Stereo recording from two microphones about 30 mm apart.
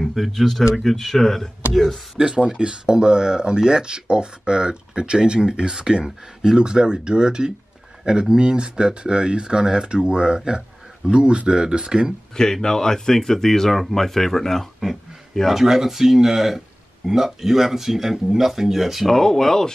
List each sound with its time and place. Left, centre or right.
0.0 s a sound: centre
0.4 s speech: centre
2.1 s speech: right
12.6 s speech: centre
15.5 s speech: centre
19.0 s speech: centre